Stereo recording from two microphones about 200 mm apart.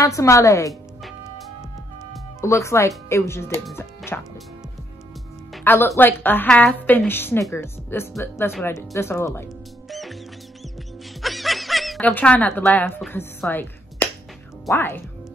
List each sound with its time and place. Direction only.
0.0 s a woman's voice: 15° left (ahead or behind)
2.4 s a woman's voice: 15° left (ahead or behind)
3.7 s music: 10° left (ahead or behind)
5.5 s a woman's voice: 10° left (ahead or behind)
9.8 s music: centre (ahead or behind)
11.1 s snicker: centre (ahead or behind)
14.7 s a woman's voice: 10° left (ahead or behind)